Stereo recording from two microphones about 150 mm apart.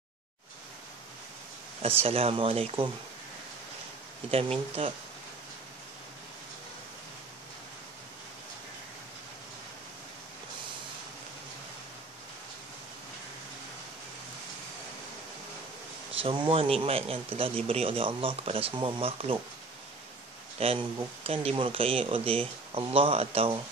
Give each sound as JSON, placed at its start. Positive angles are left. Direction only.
{"t": 1.8, "sound": "speech", "side_deg": -40}
{"t": 4.3, "sound": "speech", "side_deg": -40}
{"t": 16.2, "sound": "speech", "side_deg": -35}
{"t": 20.5, "sound": "speech", "side_deg": -40}